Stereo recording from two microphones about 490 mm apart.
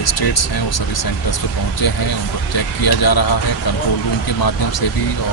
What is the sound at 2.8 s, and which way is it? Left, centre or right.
Speech, left.